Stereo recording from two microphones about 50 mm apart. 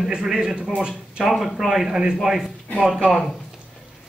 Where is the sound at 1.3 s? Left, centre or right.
Centre.